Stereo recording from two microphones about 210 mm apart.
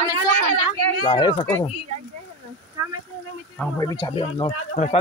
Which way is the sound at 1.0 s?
20° left (ahead or behind).